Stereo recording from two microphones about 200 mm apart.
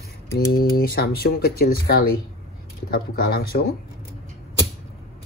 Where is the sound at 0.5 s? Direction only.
50° left (ahead or behind).